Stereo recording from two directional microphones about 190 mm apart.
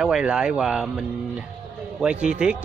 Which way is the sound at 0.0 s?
5° right (ahead or behind).